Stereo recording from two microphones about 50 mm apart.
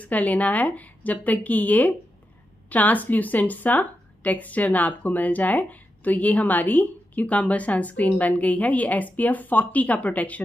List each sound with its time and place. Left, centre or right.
0.0 s speech: left